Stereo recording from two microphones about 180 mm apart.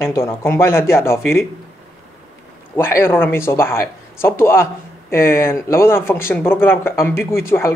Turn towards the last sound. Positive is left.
turn(degrees=15)  # may be behind; listen again after turning